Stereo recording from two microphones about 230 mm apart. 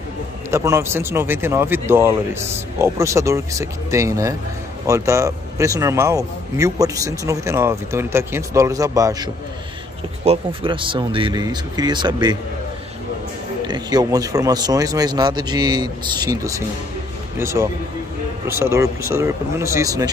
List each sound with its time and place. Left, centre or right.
0.5 s a man's voice: centre
10.2 s speech: right
13.7 s a man's voice: centre